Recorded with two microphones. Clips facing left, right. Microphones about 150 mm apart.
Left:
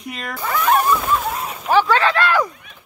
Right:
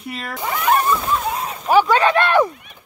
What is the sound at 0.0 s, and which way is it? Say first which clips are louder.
Speech: right 1 dB; 5° right (ahead or behind).